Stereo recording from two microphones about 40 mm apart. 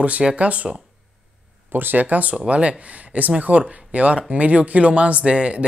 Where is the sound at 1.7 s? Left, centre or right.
Right.